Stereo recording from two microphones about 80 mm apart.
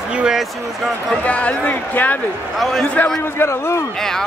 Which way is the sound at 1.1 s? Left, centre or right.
Centre.